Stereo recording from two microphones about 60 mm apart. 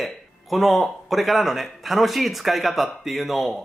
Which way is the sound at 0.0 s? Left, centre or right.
Centre.